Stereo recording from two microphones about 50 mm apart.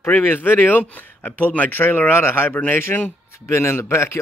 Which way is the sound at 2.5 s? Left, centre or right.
Left.